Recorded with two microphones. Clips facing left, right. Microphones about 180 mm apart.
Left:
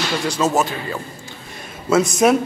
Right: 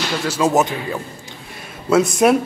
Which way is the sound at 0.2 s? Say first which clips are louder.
Right 2 dB; 5° right (ahead or behind).